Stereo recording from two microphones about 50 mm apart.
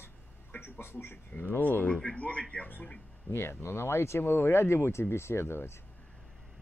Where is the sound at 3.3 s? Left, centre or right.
Left.